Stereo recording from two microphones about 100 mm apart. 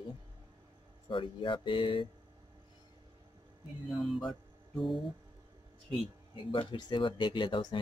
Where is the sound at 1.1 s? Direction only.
55° left (ahead or behind).